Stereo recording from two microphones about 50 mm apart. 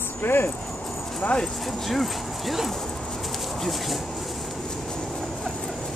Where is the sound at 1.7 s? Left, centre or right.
Centre.